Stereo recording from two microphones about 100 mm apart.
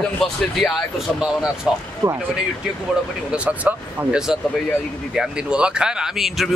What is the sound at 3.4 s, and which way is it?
Speech, 10° right (ahead or behind).